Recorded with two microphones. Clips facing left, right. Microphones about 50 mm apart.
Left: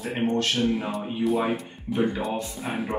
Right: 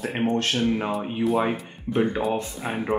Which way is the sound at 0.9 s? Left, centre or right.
Centre.